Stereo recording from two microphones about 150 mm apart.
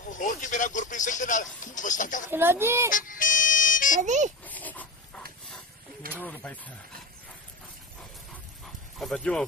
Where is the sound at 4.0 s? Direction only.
55° right (ahead or behind).